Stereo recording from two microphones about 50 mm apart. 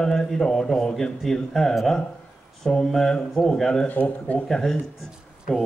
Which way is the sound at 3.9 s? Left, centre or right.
Left.